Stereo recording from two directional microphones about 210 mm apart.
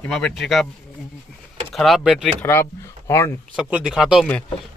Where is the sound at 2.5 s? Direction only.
15° left (ahead or behind).